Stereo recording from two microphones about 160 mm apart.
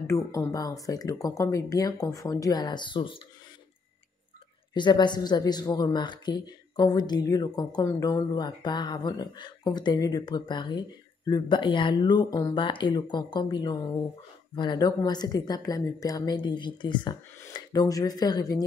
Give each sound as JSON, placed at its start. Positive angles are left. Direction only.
{"t": 0.0, "sound": "speech", "side_deg": 20}
{"t": 4.7, "sound": "speech", "side_deg": 30}